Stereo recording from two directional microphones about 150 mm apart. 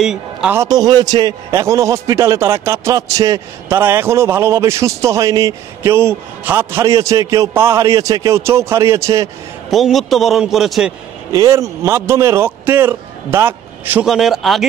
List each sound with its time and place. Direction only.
0.0 s a man's voice: 5° right (ahead or behind)
0.6 s a man's voice: 25° right (ahead or behind)
9.7 s a man's voice: centre (ahead or behind)
11.3 s a man's voice: 20° right (ahead or behind)
14.0 s a man's voice: centre (ahead or behind)